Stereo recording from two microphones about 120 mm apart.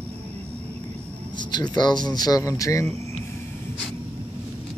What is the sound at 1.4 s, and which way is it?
Speech, 35° left (ahead or behind).